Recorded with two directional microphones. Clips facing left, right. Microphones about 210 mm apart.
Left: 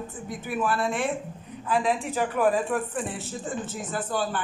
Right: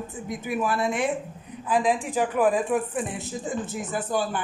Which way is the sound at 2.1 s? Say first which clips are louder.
Right 1 dB; 5° right (ahead or behind).